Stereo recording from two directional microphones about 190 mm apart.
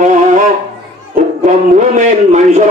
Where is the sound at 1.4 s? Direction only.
40° right (ahead or behind).